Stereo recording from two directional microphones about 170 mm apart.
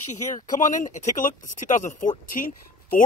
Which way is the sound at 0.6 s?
50° left (ahead or behind).